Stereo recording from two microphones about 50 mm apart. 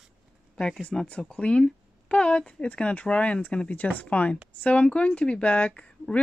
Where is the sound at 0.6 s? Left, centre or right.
Left.